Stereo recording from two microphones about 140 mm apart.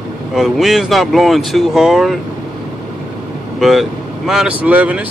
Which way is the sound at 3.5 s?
Centre (ahead or behind).